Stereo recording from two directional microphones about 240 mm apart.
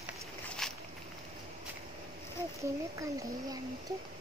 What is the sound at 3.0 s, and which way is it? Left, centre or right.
Speech, centre.